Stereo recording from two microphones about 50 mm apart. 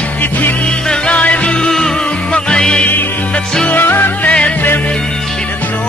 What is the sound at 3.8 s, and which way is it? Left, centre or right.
Music, left.